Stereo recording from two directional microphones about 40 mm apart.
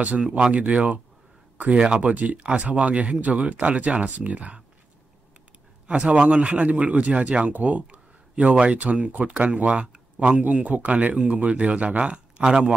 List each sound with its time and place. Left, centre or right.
0.4 s speech: right
5.9 s a man's voice: right
6.6 s speech: right
8.7 s a man's voice: right